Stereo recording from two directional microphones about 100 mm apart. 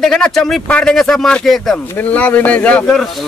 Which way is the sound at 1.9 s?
15° left (ahead or behind).